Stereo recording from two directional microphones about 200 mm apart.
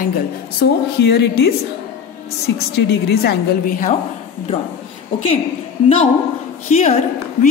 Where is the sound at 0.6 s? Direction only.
55° left (ahead or behind).